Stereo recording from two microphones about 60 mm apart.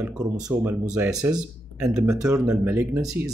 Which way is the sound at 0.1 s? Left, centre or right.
Centre.